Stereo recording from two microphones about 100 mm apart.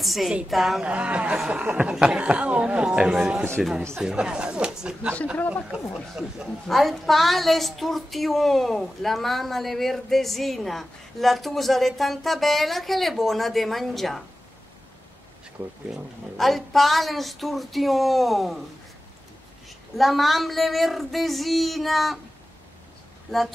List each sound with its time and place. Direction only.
0.0 s a woman's voice: centre (ahead or behind)
5.1 s speech: 10° left (ahead or behind)
5.7 s a woman's voice: 5° right (ahead or behind)
15.6 s speech: 20° right (ahead or behind)
15.9 s a woman's voice: centre (ahead or behind)
20.0 s a woman's voice: centre (ahead or behind)
23.3 s a woman's voice: centre (ahead or behind)